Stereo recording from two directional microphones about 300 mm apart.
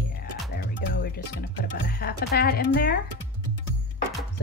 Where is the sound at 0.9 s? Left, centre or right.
Left.